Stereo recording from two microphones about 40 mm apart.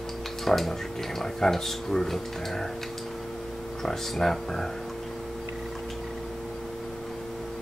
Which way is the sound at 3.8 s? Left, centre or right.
Centre.